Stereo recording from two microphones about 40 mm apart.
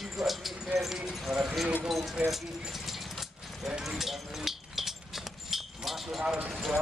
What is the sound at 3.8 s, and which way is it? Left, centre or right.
Clip-clop, centre.